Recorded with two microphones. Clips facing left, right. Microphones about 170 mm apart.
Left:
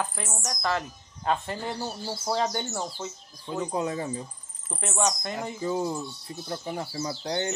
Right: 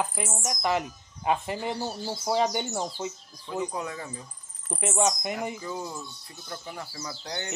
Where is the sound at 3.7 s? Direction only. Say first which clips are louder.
Left 6 dB; 25° left (ahead or behind).